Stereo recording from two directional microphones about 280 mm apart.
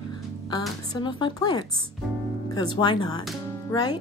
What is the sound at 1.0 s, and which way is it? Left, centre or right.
Speech, centre.